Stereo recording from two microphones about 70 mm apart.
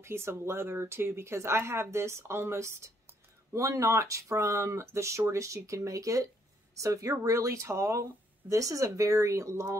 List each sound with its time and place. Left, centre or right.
0.0 s speech: right